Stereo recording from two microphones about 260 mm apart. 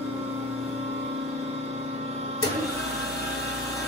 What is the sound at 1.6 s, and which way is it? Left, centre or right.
Vehicle, right.